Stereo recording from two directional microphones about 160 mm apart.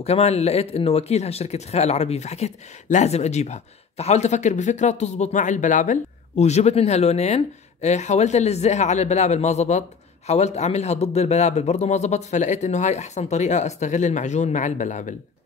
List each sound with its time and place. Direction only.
0.0 s speech: 40° left (ahead or behind)